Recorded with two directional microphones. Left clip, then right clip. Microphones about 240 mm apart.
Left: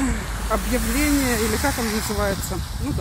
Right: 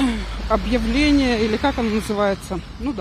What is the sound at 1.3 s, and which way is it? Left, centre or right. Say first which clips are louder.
Speech: right 3 dB; centre.